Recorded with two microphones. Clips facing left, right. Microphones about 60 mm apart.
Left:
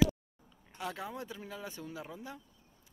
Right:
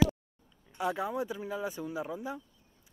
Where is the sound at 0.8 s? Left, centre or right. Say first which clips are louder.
Right 8 dB; centre.